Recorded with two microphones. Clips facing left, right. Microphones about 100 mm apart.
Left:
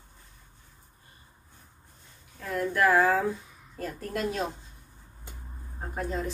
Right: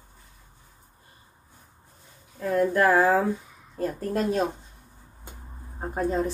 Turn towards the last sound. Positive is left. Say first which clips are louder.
# right 6 dB
turn(degrees=-35)  # may be behind; listen again after turning